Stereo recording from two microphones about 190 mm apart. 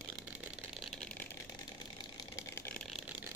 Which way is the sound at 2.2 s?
15° left (ahead or behind).